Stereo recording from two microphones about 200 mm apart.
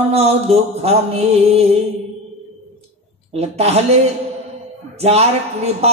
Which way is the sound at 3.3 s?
30° right (ahead or behind).